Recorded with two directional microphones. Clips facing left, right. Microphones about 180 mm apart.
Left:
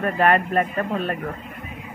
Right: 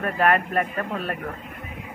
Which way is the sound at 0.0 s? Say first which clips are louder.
Left 2 dB; centre (ahead or behind).